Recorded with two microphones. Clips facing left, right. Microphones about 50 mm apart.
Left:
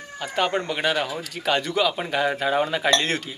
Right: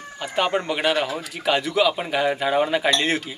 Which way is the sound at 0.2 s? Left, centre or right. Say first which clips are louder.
Right 1 dB; centre.